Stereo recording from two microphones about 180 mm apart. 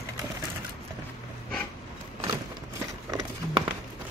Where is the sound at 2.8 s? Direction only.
20° right (ahead or behind).